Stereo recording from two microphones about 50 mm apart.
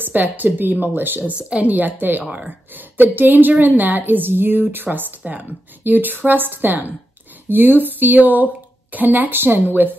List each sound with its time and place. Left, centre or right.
0.0 s a woman's voice: right